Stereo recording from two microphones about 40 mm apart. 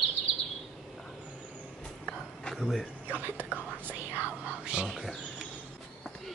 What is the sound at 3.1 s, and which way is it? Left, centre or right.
Speech, right.